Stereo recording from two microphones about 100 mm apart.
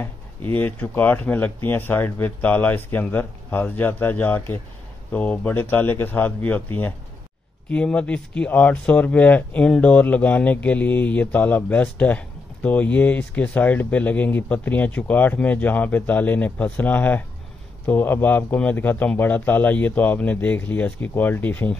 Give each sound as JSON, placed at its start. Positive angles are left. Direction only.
{"t": 0.0, "sound": "speech", "side_deg": 20}